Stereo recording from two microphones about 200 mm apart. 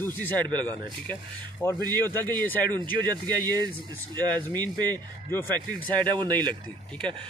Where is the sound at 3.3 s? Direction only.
20° right (ahead or behind).